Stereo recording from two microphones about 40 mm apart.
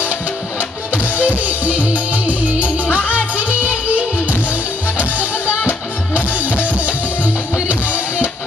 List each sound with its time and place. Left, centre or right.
0.6 s music: right
2.8 s music: left
3.1 s music: right
7.6 s music: right